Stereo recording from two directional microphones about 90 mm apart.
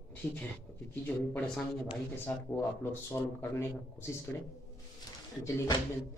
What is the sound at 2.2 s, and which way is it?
Speech, 25° left (ahead or behind).